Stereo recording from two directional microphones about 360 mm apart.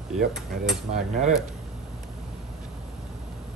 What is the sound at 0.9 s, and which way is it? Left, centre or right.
Cutlery, centre.